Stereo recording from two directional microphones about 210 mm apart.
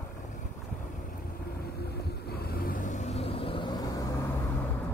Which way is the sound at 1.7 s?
50° left (ahead or behind).